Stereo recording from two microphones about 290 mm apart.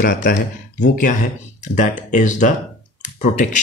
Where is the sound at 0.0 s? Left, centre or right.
Left.